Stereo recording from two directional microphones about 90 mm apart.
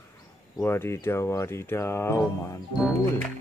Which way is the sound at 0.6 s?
25° left (ahead or behind).